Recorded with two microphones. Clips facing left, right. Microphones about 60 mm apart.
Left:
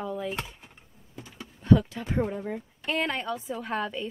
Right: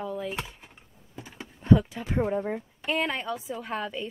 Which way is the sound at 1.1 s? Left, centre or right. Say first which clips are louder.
Right 1 dB; right.